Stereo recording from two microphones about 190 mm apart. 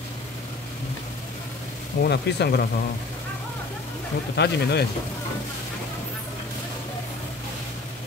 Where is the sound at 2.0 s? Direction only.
60° left (ahead or behind).